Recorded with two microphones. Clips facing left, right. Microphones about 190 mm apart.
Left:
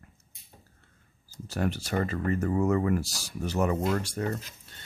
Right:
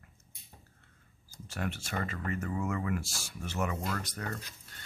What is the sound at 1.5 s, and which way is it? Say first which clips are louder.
Speech: left 7 dB; 35° left (ahead or behind).